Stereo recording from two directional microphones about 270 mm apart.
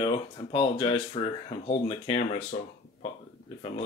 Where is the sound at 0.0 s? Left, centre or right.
Centre.